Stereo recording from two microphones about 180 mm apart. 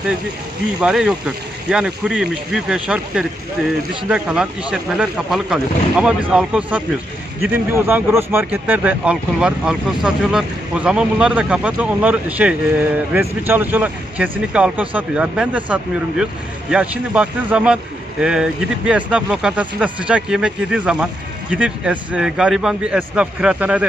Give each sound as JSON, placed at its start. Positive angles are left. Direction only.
{"t": 0.7, "sound": "speech", "side_deg": -5}